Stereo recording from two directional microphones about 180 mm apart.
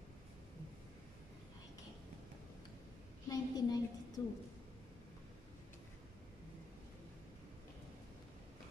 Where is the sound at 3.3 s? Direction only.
20° left (ahead or behind).